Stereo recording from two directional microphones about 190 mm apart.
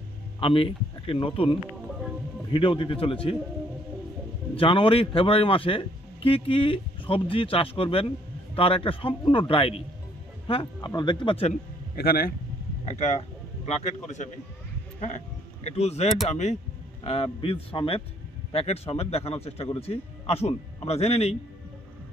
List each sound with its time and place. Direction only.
0.4 s a man's voice: 30° left (ahead or behind)
4.6 s a man's voice: 25° left (ahead or behind)
11.9 s a man's voice: 55° left (ahead or behind)
12.8 s a man's voice: 35° left (ahead or behind)